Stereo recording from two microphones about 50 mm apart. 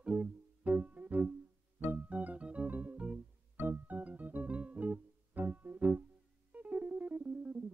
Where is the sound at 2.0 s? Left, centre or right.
Right.